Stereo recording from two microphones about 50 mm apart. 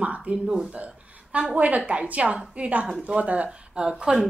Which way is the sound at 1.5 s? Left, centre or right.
Right.